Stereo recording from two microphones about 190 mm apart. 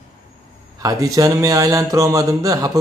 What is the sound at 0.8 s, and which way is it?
A man's voice, 20° right (ahead or behind).